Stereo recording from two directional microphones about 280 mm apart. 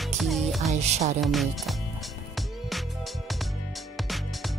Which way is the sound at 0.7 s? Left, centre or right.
Right.